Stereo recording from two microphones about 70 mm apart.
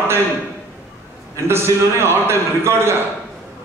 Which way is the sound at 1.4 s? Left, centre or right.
Right.